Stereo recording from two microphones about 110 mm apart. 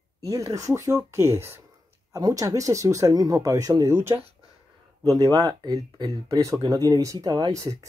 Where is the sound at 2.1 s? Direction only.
35° right (ahead or behind).